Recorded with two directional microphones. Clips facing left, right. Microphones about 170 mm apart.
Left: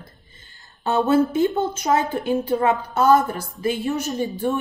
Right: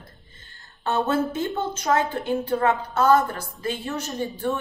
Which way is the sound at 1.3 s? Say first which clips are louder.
Left 6 dB; 15° left (ahead or behind).